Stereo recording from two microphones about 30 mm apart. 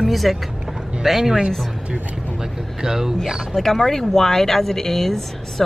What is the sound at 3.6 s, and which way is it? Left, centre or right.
Speech, centre.